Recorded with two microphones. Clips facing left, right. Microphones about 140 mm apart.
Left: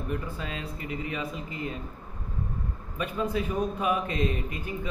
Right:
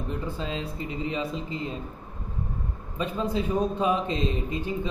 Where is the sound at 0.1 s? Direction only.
25° right (ahead or behind).